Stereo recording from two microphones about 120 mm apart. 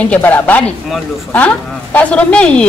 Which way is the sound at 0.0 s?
10° left (ahead or behind).